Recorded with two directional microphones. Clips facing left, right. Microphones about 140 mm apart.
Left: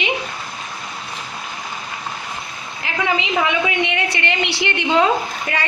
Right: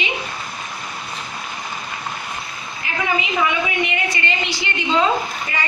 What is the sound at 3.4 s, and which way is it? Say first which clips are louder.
A woman's voice: left 1 dB; 80° left.